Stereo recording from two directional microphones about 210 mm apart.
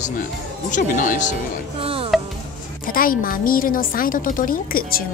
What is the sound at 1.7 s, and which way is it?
Speech, 25° right (ahead or behind).